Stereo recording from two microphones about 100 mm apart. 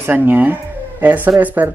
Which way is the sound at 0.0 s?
20° right (ahead or behind).